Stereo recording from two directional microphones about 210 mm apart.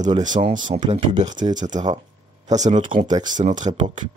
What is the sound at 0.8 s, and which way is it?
Speech, 20° right (ahead or behind).